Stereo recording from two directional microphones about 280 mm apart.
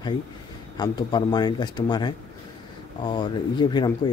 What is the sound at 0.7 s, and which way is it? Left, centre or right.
Speech, centre.